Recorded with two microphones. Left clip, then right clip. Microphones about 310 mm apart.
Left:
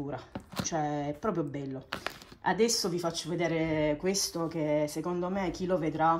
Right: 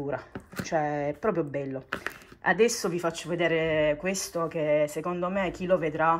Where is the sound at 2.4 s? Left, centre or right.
Centre.